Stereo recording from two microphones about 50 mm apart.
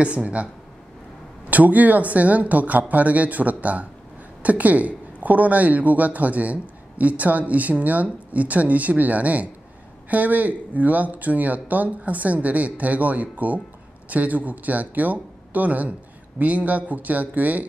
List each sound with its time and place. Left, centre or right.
0.0 s speech: right
1.5 s speech: right